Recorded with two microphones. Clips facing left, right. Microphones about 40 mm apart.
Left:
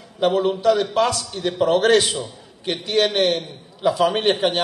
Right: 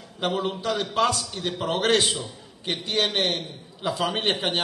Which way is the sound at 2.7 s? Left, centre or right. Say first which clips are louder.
Left 5 dB; left.